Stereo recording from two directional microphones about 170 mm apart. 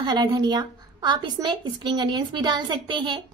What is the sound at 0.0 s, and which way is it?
A woman's voice, 25° right (ahead or behind).